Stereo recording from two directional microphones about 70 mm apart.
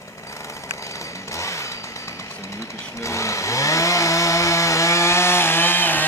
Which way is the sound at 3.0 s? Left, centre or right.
Left.